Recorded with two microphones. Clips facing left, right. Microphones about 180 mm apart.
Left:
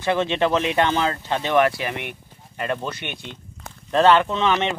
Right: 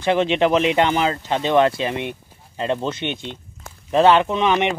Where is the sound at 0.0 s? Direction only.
20° right (ahead or behind).